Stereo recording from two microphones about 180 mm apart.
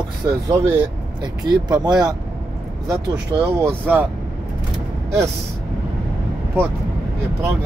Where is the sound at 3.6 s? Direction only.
10° right (ahead or behind).